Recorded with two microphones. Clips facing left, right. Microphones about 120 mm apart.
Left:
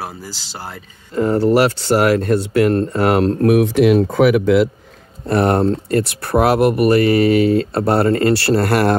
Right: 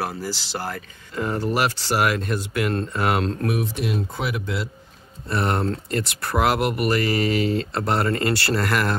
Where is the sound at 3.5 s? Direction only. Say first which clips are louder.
Left 13 dB; 80° left.